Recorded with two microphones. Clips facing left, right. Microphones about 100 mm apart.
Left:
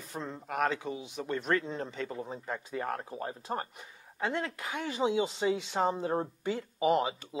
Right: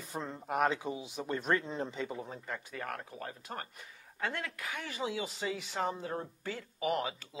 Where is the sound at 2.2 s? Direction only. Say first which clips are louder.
Left 4 dB; 20° left (ahead or behind).